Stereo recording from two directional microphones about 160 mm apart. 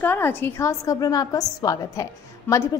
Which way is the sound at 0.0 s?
10° left (ahead or behind).